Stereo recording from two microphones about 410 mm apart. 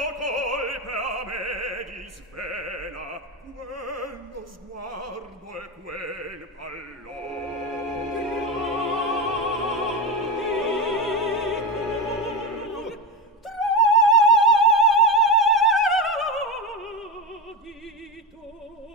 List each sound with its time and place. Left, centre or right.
0.0 s opera: right
7.7 s music: centre
13.5 s opera: centre